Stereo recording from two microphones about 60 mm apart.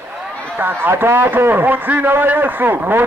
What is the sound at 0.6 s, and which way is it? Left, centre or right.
A man's voice, right.